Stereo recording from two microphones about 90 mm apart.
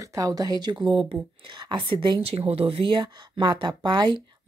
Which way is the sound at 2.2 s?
90° right.